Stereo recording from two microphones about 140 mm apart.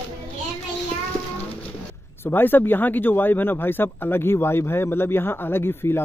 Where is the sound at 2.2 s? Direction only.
15° left (ahead or behind).